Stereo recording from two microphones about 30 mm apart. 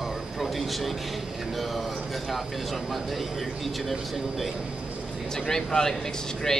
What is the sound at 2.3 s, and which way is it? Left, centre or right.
Speech, centre.